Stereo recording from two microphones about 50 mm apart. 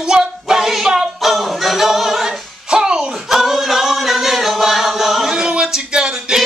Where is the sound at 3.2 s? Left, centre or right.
Centre.